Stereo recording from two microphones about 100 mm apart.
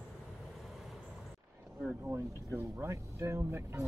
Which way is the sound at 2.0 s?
25° right (ahead or behind).